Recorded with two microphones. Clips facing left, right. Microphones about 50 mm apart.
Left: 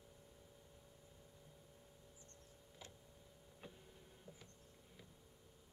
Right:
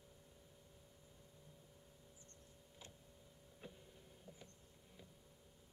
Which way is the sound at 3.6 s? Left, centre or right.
Centre.